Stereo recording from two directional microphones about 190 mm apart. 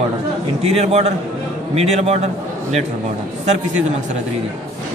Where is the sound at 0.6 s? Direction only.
35° right (ahead or behind).